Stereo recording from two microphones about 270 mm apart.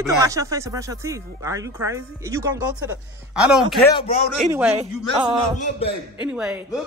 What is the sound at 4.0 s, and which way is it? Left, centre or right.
Speech, left.